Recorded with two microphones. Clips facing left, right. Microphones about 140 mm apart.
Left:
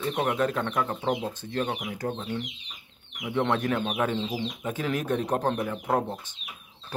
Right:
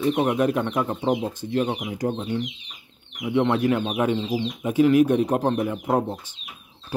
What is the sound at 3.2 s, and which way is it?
Speech, 10° right (ahead or behind).